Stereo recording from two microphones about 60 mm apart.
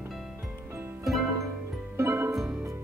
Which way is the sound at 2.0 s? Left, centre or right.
Right.